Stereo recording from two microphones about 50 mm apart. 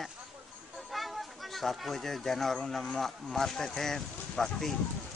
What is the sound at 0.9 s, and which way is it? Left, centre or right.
Speech, centre.